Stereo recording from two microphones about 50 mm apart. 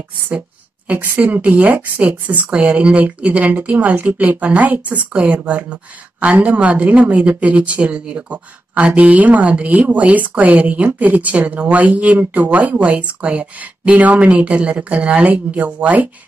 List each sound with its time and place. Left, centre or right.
0.9 s speech: right